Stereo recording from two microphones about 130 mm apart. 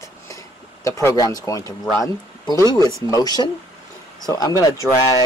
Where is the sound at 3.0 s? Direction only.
30° left (ahead or behind).